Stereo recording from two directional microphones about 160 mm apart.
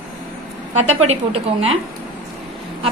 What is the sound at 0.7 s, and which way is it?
A woman's voice, 40° right (ahead or behind).